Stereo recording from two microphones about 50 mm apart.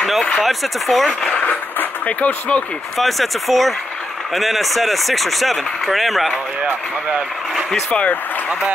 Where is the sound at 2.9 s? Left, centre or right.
Centre.